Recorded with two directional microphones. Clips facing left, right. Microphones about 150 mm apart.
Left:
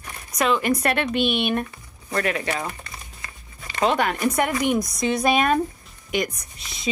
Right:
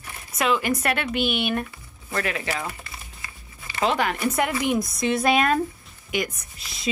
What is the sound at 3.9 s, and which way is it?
Speech, 25° left (ahead or behind).